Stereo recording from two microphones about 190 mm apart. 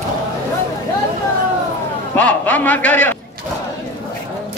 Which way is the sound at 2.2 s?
10° left (ahead or behind).